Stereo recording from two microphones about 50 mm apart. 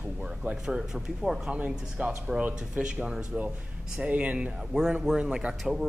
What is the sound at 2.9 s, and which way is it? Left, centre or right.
Speech, centre.